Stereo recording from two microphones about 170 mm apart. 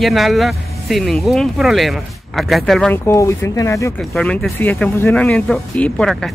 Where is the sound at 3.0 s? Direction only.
15° left (ahead or behind).